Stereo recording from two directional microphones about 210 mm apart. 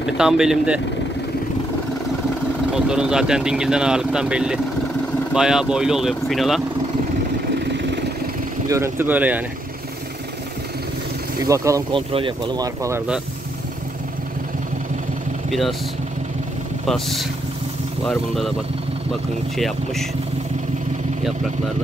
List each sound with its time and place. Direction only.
0.0 s speech: 5° right (ahead or behind)
2.7 s speech: 5° right (ahead or behind)
8.6 s speech: 15° right (ahead or behind)
11.4 s speech: 15° right (ahead or behind)
16.8 s speech: centre (ahead or behind)
19.5 s speech: centre (ahead or behind)